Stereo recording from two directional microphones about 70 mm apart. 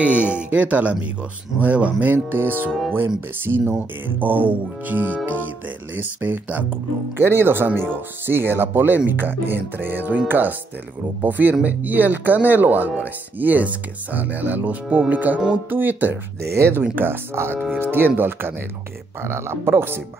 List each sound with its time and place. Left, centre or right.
0.0 s speech: centre
2.1 s speech: right
16.5 s speech: right